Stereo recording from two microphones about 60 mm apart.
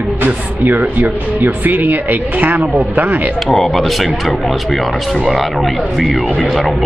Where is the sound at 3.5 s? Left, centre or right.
Centre.